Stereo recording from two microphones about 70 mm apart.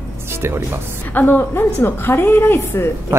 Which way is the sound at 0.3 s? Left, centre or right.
Right.